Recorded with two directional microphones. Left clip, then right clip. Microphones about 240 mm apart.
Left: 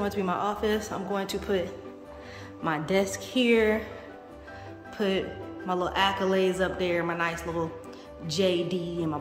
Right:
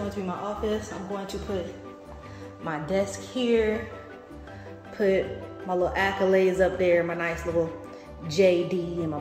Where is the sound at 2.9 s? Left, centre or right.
Left.